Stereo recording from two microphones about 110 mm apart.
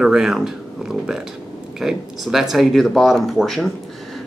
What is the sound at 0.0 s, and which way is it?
Speech, 5° right (ahead or behind).